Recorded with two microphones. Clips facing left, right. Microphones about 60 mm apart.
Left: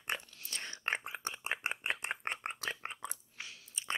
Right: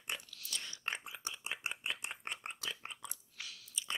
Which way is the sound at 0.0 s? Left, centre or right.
Left.